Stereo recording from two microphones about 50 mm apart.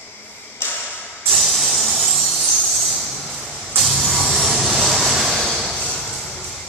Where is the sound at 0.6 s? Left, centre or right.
Left.